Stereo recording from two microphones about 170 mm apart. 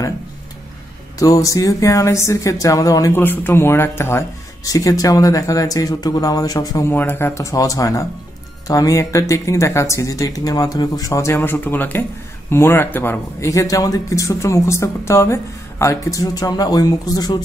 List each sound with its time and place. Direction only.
1.2 s speech: 20° left (ahead or behind)